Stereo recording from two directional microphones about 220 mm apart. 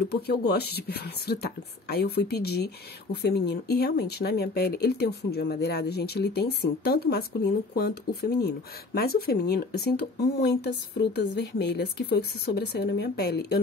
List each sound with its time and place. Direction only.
0.1 s speech: 45° left (ahead or behind)